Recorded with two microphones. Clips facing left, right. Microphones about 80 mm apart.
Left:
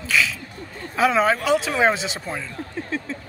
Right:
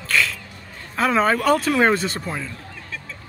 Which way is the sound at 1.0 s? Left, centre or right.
Centre.